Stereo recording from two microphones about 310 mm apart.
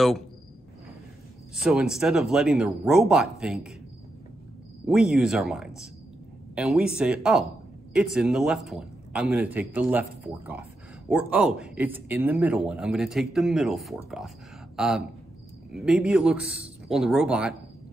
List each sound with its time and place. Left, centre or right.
1.5 s speech: centre
4.8 s speech: centre